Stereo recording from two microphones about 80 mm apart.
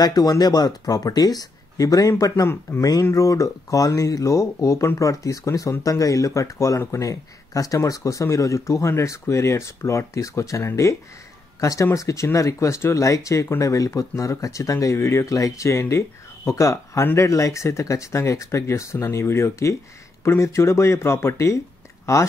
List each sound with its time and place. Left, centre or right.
0.0 s speech: left